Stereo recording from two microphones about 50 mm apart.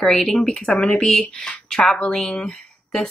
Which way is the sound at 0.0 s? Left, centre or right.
Centre.